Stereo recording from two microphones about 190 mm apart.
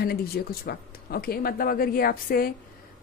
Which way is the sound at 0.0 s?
55° left (ahead or behind).